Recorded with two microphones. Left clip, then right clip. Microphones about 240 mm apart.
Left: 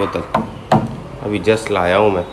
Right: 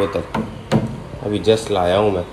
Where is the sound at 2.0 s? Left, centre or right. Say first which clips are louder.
Left 3 dB; centre.